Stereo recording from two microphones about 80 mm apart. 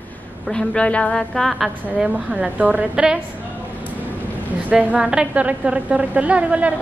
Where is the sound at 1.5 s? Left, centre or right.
Centre.